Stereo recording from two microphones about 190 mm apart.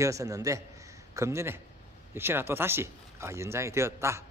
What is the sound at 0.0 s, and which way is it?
A man's voice, 15° right (ahead or behind).